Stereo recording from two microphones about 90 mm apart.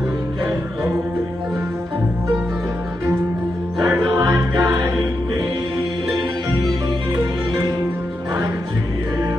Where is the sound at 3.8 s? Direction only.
20° right (ahead or behind).